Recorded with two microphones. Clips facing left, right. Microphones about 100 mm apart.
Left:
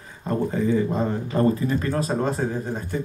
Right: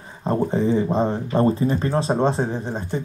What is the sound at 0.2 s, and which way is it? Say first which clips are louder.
Speech: right 3 dB; 30° right (ahead or behind).